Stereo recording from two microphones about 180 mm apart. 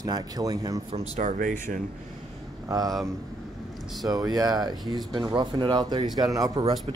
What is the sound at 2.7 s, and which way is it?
Speech, 20° right (ahead or behind).